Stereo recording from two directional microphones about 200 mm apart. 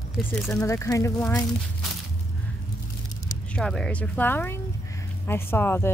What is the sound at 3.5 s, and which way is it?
Speech, 5° left (ahead or behind).